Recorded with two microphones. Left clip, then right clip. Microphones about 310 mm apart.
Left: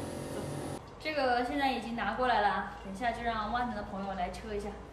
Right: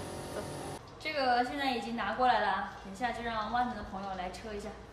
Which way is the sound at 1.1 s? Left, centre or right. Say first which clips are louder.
Even; centre.